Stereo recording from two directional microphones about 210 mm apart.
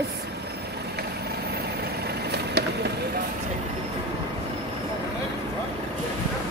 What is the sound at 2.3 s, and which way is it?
Vehicle, 50° right (ahead or behind).